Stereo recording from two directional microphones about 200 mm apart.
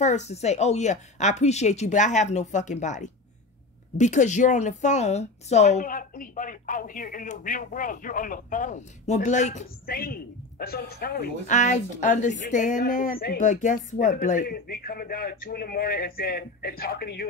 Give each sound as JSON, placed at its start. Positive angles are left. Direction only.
{"t": 0.0, "sound": "a woman's voice", "side_deg": 35}